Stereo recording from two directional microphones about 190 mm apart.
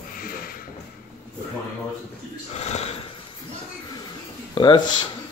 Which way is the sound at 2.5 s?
35° left (ahead or behind).